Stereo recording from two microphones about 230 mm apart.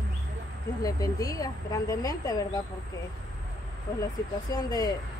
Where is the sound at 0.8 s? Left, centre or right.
Centre.